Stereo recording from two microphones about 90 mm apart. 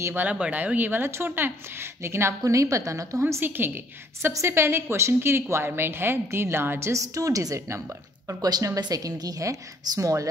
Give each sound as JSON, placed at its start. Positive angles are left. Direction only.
{"t": 0.0, "sound": "a woman's voice", "side_deg": -20}
{"t": 8.3, "sound": "a woman's voice", "side_deg": -45}